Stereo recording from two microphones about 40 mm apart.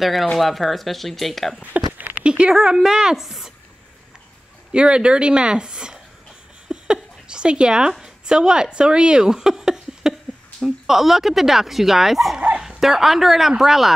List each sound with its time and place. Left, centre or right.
0.0 s speech: centre
1.7 s a sound: right
2.1 s a sound: right
2.5 s speech: centre
4.7 s speech: right
6.7 s a sound: right
8.0 s speech: centre
12.4 s dog: right
12.6 s speech: centre